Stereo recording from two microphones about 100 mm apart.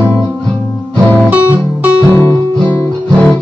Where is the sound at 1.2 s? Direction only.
20° right (ahead or behind).